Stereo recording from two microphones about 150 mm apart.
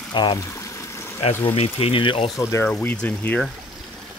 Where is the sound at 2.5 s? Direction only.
15° left (ahead or behind).